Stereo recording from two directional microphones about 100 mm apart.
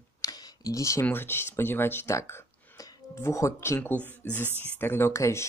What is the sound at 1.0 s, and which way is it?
Speech, 20° left (ahead or behind).